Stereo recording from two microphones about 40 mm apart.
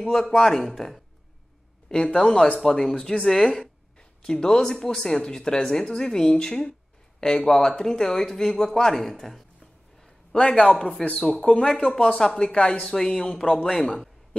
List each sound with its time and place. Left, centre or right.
0.1 s speech: centre
2.1 s speech: left
2.6 s speech: centre
4.2 s speech: centre
10.3 s speech: left